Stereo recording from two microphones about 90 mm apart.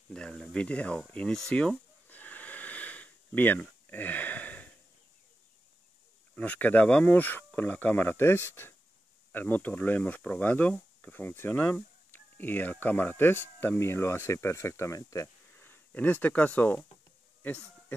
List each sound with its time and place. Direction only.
0.1 s speech: 5° left (ahead or behind)
1.1 s a sound: 15° left (ahead or behind)
6.3 s speech: 15° left (ahead or behind); by 15.2 s 35° left (ahead or behind)
15.5 s speech: 20° left (ahead or behind)
17.4 s insect: 20° left (ahead or behind)